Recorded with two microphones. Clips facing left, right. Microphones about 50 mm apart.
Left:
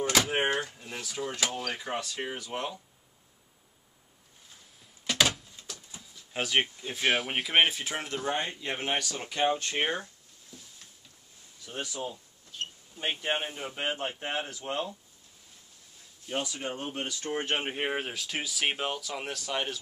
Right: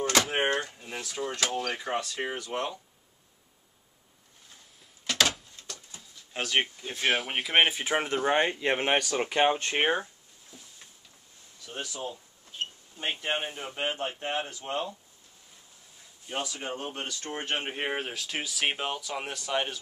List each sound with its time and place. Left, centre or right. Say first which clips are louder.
0.0 s speech: right 1 dB; centre
5.0 s a sound: even; centre
5.6 s speech: even; centre
7.9 s speech: right 7 dB; right
8.3 s speech: right 7 dB; right
9.5 s speech: right 3 dB; right
10.5 s a sound: left 1 dB; centre
11.8 s speech: left 1 dB; centre
12.5 s a sound: right 2 dB; right
12.9 s speech: left 1 dB; centre
14.6 s speech: right 1 dB; centre
16.3 s speech: even; centre